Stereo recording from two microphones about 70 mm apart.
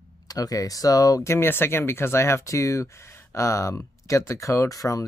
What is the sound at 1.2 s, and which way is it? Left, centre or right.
Speech, left.